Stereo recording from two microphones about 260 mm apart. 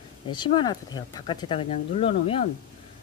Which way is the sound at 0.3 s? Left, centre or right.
Centre.